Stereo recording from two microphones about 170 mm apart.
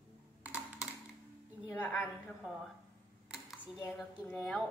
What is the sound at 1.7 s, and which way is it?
Speech, 10° left (ahead or behind).